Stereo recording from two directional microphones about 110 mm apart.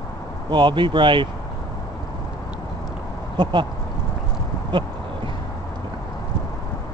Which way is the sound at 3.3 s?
45° right (ahead or behind).